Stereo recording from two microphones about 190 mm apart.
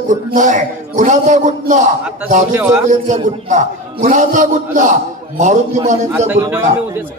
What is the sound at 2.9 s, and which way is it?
A man's voice, 40° right (ahead or behind).